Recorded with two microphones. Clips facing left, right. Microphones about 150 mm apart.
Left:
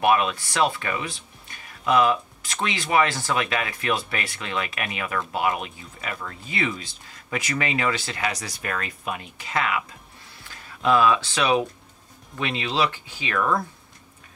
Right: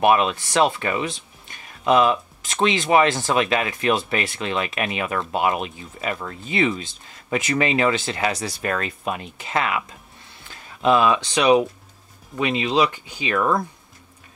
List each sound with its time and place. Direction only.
0.0 s speech: 25° right (ahead or behind)